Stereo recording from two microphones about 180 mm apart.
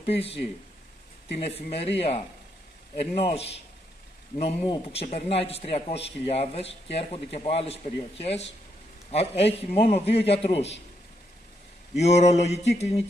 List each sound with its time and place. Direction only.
0.0 s a man's voice: 35° left (ahead or behind)
1.4 s a man's voice: 35° left (ahead or behind)
12.0 s a man's voice: 40° left (ahead or behind)